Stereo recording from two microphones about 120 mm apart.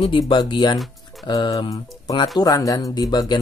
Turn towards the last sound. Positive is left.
turn(degrees=35)  # may be behind; listen again after turning